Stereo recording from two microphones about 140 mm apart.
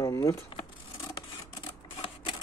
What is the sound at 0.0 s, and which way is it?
Keys jangling, 25° left (ahead or behind).